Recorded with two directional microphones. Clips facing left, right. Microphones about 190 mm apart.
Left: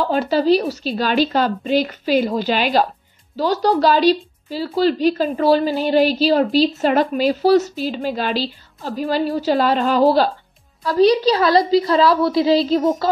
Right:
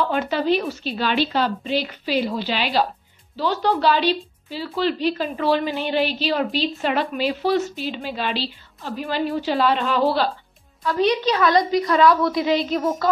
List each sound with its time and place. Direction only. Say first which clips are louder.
0.0 s a woman's voice: left 4 dB; 35° left (ahead or behind)